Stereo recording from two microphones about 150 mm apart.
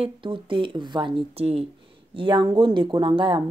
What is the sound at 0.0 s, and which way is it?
Speech, 35° right (ahead or behind).